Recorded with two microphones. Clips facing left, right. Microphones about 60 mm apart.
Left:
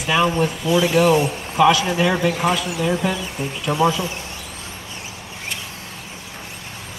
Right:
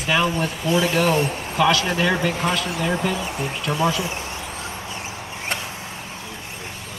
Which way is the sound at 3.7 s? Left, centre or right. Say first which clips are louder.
Left 4 dB; left.